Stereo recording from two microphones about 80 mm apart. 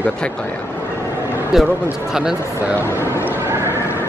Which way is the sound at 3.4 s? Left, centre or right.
Right.